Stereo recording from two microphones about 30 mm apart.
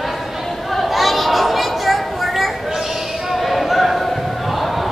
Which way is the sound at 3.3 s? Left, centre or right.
Centre.